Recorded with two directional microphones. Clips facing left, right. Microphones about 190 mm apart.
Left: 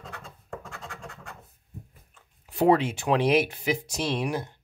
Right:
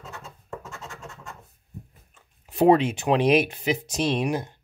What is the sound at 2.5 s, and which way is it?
Speech, 20° right (ahead or behind).